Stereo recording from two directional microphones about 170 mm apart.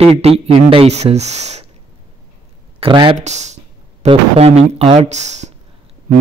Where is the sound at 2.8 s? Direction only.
30° right (ahead or behind).